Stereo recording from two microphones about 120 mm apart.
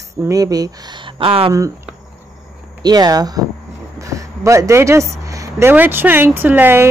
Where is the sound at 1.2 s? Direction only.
50° right (ahead or behind).